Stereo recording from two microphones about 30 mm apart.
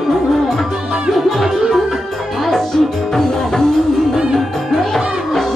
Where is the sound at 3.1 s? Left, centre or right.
Centre.